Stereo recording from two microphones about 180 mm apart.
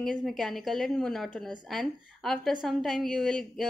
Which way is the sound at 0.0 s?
Centre (ahead or behind).